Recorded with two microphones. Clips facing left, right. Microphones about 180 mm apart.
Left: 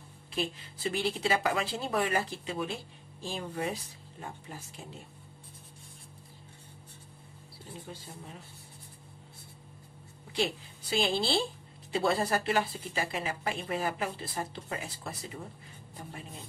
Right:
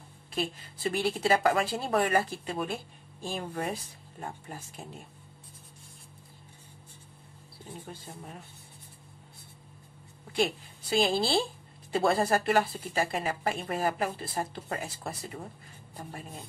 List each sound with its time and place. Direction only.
0.3 s speech: 45° right (ahead or behind)
10.3 s speech: 50° right (ahead or behind)